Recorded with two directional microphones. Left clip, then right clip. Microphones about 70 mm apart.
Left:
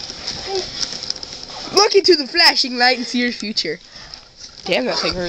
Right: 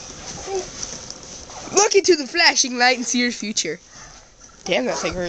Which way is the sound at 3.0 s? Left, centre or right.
Right.